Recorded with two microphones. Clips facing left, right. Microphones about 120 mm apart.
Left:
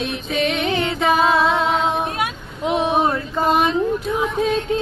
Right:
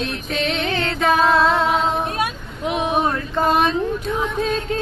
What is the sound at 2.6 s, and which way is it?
Speech, 25° left (ahead or behind).